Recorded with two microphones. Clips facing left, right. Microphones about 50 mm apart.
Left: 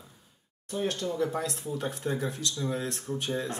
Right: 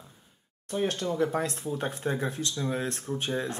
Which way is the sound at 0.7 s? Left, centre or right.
Right.